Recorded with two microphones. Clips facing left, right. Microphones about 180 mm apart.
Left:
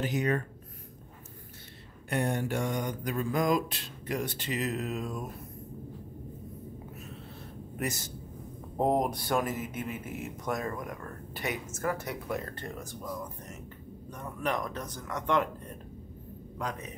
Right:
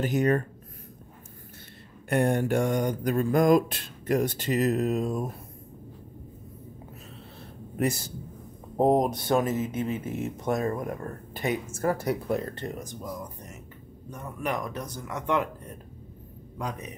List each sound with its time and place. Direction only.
0.0 s mantra: 45° right (ahead or behind)
2.0 s mantra: 50° right (ahead or behind); by 5.3 s 35° right (ahead or behind)
8.7 s speech: 20° right (ahead or behind)